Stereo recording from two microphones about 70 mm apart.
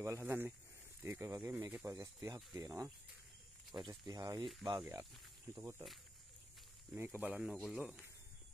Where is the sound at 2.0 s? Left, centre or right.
Right.